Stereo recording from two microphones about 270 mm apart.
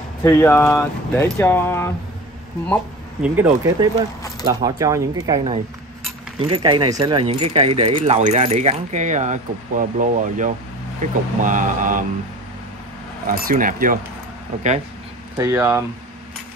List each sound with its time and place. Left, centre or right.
0.2 s speech: centre
3.3 s speech: centre; by 12.0 s right
13.3 s speech: right
15.3 s speech: centre